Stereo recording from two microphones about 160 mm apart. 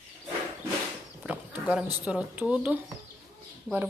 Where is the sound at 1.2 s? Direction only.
5° right (ahead or behind).